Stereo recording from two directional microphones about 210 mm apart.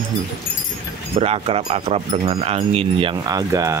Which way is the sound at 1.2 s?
25° right (ahead or behind).